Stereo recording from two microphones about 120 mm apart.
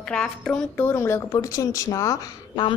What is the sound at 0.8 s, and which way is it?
A woman's voice, 20° left (ahead or behind).